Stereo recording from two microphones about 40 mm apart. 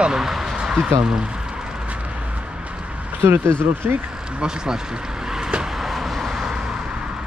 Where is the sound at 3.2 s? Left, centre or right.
Right.